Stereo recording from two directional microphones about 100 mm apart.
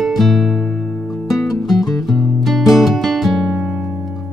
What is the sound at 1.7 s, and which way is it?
Music, 40° left (ahead or behind).